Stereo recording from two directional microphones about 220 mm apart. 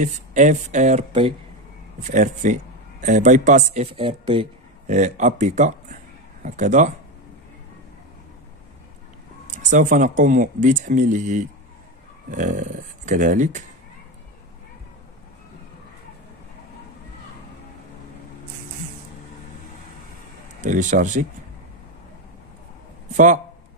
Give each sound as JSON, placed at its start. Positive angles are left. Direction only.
{"t": 0.0, "sound": "a man's voice", "side_deg": -35}
{"t": 9.6, "sound": "speech", "side_deg": -35}
{"t": 20.6, "sound": "speech", "side_deg": -35}
{"t": 23.1, "sound": "speech", "side_deg": -35}